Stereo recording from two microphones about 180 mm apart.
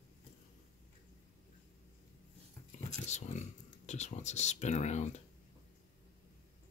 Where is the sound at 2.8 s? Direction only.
40° left (ahead or behind).